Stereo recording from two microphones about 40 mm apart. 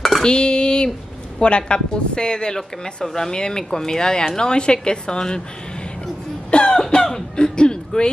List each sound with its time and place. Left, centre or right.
0.2 s speech: left
6.5 s cough: left
6.8 s a sound: centre